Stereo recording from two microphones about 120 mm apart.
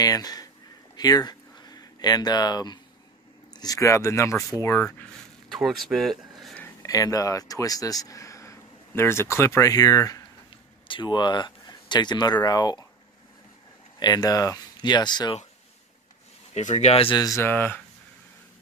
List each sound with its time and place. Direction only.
0.0 s speech: 35° left (ahead or behind)
0.9 s a sound: 35° left (ahead or behind)
3.5 s speech: 30° left (ahead or behind)
5.5 s speech: centre (ahead or behind)
6.8 s speech: 30° left (ahead or behind)
10.9 s speech: 40° left (ahead or behind)
13.9 s speech: 35° left (ahead or behind)
16.5 s speech: 70° left (ahead or behind)
17.1 s speech: 30° left (ahead or behind)